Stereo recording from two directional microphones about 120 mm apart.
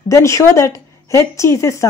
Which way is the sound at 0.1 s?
25° left (ahead or behind).